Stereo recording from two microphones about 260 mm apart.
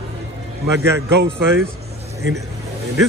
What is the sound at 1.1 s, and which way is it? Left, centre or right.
Speech, right.